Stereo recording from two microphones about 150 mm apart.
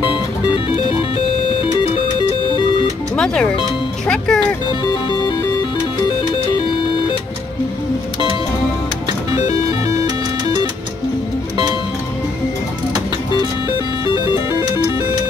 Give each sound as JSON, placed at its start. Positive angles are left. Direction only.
{"t": 3.2, "sound": "speech", "side_deg": 5}
{"t": 9.8, "sound": "music", "side_deg": -25}